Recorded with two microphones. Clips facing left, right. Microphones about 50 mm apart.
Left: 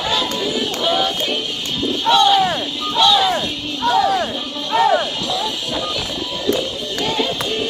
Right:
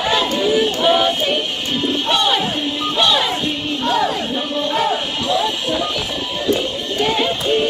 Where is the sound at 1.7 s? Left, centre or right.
Right.